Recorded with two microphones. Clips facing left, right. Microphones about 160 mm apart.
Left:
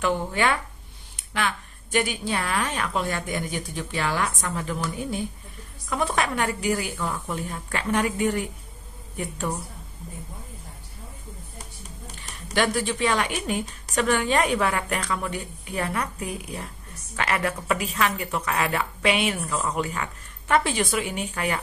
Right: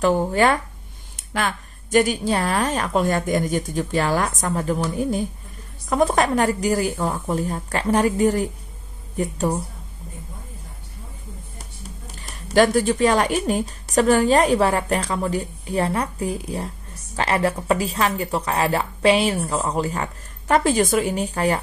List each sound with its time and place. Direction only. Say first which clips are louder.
0.0 s a woman's voice: right 6 dB; 40° right (ahead or behind)
12.2 s a woman's voice: right 8 dB; 40° right (ahead or behind)